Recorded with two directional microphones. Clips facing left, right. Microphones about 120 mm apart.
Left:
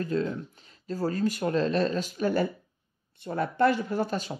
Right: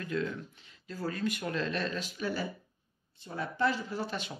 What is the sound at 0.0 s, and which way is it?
Speech, 35° left (ahead or behind).